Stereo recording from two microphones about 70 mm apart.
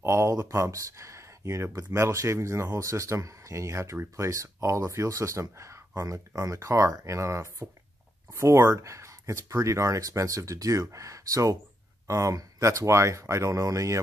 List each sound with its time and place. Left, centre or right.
0.0 s speech: right